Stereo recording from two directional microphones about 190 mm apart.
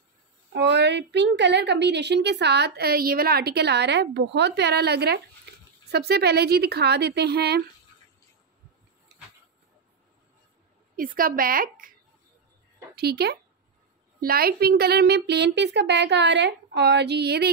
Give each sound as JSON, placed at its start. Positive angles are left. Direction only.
{"t": 0.5, "sound": "a woman's voice", "side_deg": -65}
{"t": 11.0, "sound": "a woman's voice", "side_deg": -50}
{"t": 12.9, "sound": "a woman's voice", "side_deg": -55}